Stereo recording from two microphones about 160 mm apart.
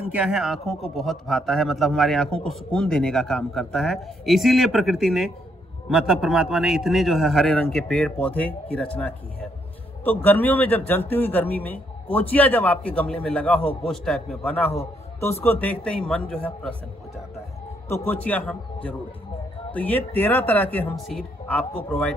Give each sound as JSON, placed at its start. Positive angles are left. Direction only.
{"t": 0.1, "sound": "a man's voice", "side_deg": -5}
{"t": 10.0, "sound": "a man's voice", "side_deg": 10}
{"t": 17.8, "sound": "a man's voice", "side_deg": 15}